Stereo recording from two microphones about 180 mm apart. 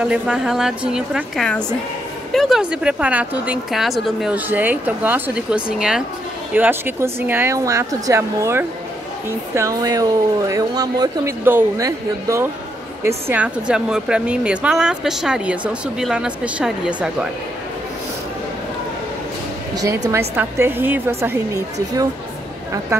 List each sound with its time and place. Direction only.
0.0 s speech: 5° right (ahead or behind)
20.1 s speech: 15° right (ahead or behind)